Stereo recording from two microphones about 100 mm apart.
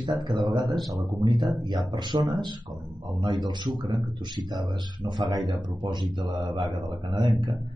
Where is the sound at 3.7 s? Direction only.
55° right (ahead or behind).